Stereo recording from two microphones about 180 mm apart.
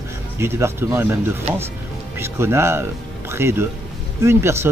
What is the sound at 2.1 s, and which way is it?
Speech, 15° right (ahead or behind).